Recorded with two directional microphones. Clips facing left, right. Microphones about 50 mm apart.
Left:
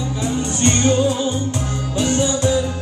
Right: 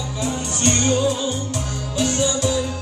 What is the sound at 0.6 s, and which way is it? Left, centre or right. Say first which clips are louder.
Music: left 3 dB; left.